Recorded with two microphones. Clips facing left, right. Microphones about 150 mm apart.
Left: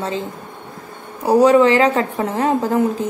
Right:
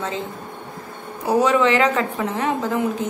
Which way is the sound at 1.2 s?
35° left (ahead or behind).